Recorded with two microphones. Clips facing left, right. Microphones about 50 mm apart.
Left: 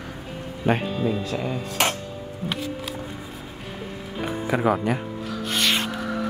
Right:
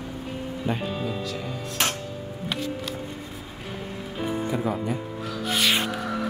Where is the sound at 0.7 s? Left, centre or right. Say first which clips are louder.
Left 7 dB; left.